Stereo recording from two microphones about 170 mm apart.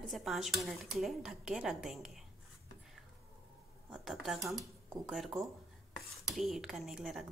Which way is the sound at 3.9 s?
Centre (ahead or behind).